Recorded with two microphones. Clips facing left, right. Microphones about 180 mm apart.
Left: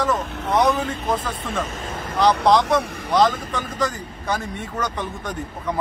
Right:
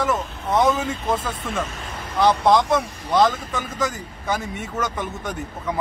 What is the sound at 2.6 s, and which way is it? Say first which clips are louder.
Speech: left 1 dB; 70° left (ahead or behind).